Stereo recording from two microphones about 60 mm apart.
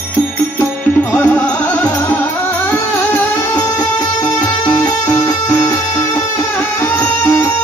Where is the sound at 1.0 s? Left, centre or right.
Left.